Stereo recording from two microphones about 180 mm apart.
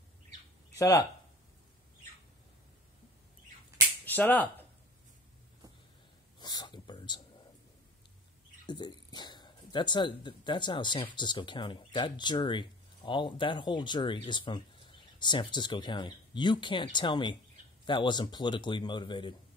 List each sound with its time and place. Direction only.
0.7 s speech: 20° left (ahead or behind)
4.0 s a sound: 10° left (ahead or behind)
6.4 s whispering: 25° left (ahead or behind)
8.6 s a man's voice: 25° left (ahead or behind)